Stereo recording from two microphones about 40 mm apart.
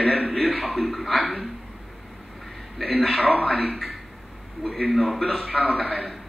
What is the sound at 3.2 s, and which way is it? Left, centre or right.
Speech, left.